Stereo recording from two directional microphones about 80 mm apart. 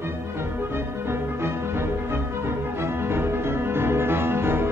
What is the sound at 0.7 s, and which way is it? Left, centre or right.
Music, right.